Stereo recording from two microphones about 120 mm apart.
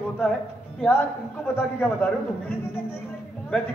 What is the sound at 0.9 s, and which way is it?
A man's voice, 20° left (ahead or behind).